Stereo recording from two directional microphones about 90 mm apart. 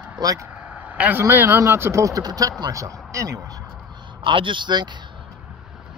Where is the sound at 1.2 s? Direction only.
25° right (ahead or behind).